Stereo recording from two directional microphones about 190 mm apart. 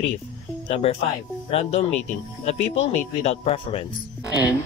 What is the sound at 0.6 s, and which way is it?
Speech, 30° left (ahead or behind).